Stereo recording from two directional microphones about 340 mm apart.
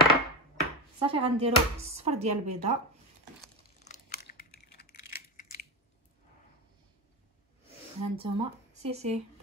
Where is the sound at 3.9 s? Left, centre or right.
Left.